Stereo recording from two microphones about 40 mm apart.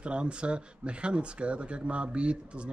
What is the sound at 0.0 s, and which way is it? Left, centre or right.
Speech, right.